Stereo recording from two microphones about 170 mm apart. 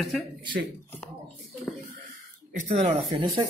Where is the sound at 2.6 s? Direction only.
40° right (ahead or behind).